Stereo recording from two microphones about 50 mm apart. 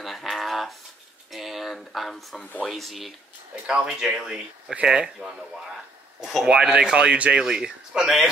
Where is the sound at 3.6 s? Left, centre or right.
Centre.